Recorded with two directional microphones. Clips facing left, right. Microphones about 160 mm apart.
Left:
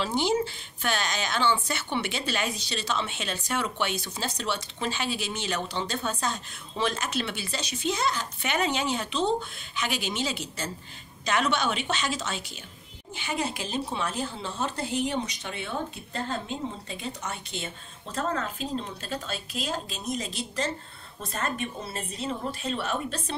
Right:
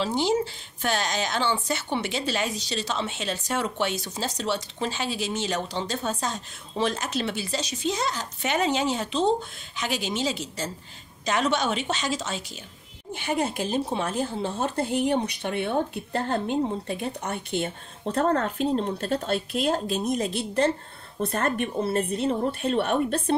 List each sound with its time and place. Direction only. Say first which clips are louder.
0.0 s a woman's voice: right 2 dB; 35° right (ahead or behind)
13.1 s speech: right 4 dB; 50° right (ahead or behind)